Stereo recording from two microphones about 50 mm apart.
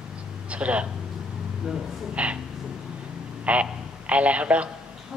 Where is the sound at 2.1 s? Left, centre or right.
Right.